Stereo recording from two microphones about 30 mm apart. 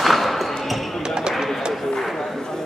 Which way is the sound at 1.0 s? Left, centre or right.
Right.